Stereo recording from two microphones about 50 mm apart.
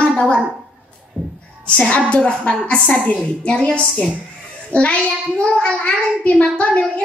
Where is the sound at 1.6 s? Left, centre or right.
Left.